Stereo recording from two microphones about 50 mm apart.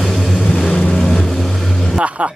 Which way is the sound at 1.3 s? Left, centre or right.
Centre.